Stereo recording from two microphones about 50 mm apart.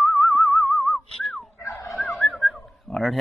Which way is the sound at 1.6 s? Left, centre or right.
Left.